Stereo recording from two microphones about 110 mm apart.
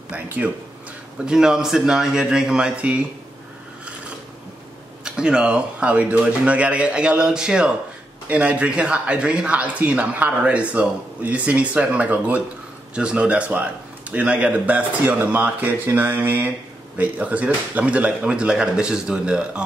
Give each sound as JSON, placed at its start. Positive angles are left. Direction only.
{"t": 0.1, "sound": "a man's voice", "side_deg": -10}
{"t": 5.0, "sound": "a man's voice", "side_deg": -10}